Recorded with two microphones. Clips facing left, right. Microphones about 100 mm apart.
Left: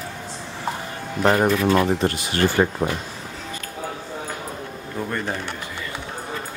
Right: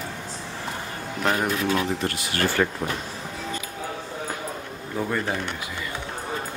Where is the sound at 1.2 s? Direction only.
30° left (ahead or behind).